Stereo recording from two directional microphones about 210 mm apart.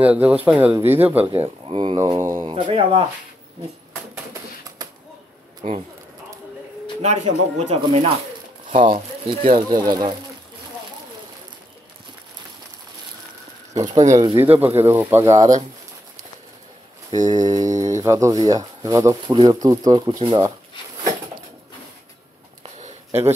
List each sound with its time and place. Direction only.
0.0 s speech: 5° right (ahead or behind)
1.3 s speech: 25° right (ahead or behind)
2.1 s speech: 15° right (ahead or behind)
2.5 s speech: 25° right (ahead or behind)
4.3 s typewriter: 15° right (ahead or behind)
5.6 s speech: 30° right (ahead or behind)
7.0 s speech: 30° right (ahead or behind)
9.7 s speech: 15° right (ahead or behind)
14.2 s speech: 10° right (ahead or behind)
17.3 s speech: 15° right (ahead or behind)
22.6 s a sound: 30° right (ahead or behind)